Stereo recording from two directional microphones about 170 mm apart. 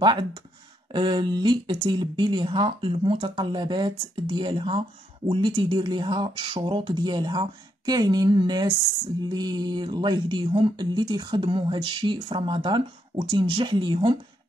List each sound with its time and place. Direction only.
0.0 s speech: 25° right (ahead or behind)